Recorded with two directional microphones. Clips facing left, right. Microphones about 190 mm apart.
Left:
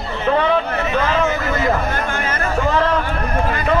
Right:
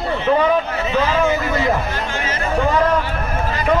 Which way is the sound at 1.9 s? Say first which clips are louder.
Left 2 dB; 55° left (ahead or behind).